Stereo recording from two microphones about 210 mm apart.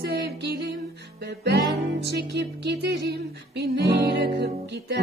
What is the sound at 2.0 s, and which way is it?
Music, 55° right (ahead or behind).